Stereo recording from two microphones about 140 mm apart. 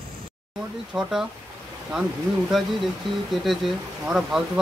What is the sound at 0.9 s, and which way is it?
Speech, 5° right (ahead or behind).